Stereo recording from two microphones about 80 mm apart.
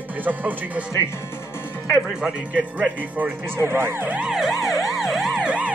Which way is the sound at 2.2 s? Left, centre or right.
Centre.